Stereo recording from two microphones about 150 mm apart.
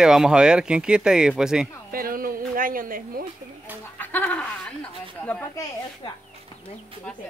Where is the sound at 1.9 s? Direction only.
70° right (ahead or behind).